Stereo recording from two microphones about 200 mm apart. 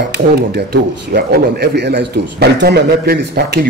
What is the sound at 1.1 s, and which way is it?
A man's voice, 50° right (ahead or behind).